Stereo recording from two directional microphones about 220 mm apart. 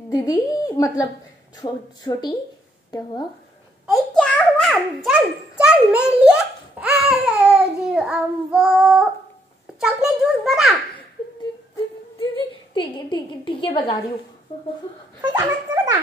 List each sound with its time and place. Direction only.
0.1 s a woman's voice: 15° left (ahead or behind)
3.8 s babbling: centre (ahead or behind)
5.6 s a child's voice: 5° right (ahead or behind)
6.8 s child singing: 5° right (ahead or behind)
9.8 s a child's voice: 5° right (ahead or behind)
12.7 s a woman's voice: 20° left (ahead or behind)
15.2 s speech: 15° right (ahead or behind)